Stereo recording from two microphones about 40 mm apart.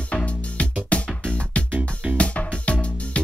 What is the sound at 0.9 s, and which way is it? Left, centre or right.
Music, left.